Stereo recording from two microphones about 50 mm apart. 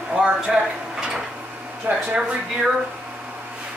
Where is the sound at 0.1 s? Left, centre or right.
Right.